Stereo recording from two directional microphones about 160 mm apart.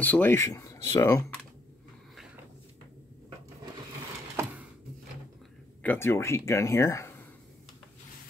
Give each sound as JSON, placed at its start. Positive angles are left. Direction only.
{"t": 0.0, "sound": "speech", "side_deg": 10}
{"t": 5.8, "sound": "speech", "side_deg": 15}